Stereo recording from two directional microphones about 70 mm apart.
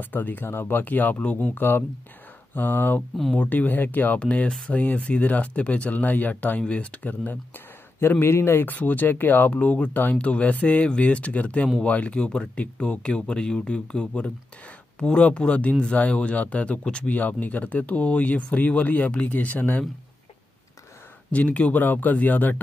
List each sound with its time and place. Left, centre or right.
0.0 s speech: left
4.3 s speech: centre
21.3 s speech: centre